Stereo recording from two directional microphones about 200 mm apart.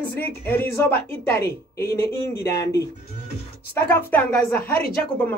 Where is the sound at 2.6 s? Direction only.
15° left (ahead or behind).